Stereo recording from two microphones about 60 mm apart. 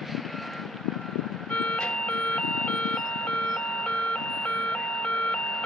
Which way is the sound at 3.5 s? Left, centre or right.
Centre.